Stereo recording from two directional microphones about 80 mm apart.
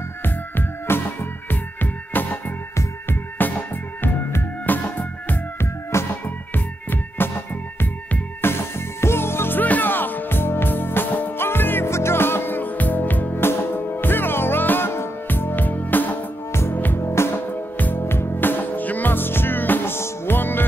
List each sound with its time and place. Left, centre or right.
0.2 s music: left